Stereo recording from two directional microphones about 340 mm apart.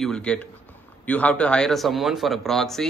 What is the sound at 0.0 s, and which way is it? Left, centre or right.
Speech, centre.